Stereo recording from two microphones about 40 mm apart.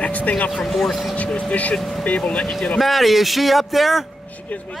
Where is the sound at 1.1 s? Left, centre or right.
Left.